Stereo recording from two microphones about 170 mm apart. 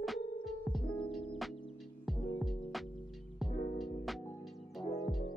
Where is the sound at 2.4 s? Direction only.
Centre (ahead or behind).